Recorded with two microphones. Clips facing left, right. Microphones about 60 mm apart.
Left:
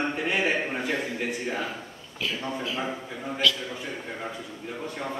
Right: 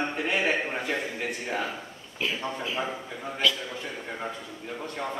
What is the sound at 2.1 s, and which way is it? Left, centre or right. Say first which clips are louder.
Speech: right 1 dB; right.